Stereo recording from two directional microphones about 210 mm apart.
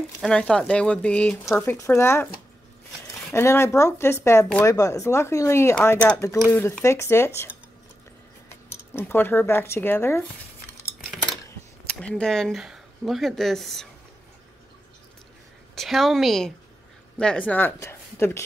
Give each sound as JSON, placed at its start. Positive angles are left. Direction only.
{"t": 0.2, "sound": "speech", "side_deg": 5}
{"t": 3.3, "sound": "speech", "side_deg": 10}
{"t": 11.9, "sound": "speech", "side_deg": 5}
{"t": 15.7, "sound": "a woman's voice", "side_deg": 0}